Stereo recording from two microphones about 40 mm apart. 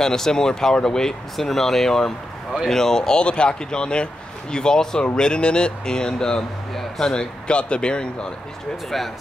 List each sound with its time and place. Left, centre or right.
0.0 s speech: centre
8.9 s speech: centre